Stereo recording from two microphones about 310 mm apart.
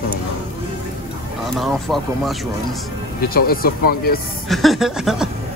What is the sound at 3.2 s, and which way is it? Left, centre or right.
Speech, left.